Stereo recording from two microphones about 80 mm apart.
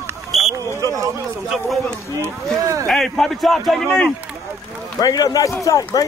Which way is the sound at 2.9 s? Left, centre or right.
Centre.